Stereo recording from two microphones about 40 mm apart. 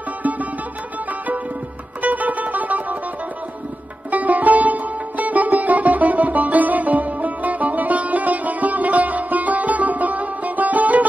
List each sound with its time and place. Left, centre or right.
0.2 s music: right
2.0 s music: right
4.1 s music: right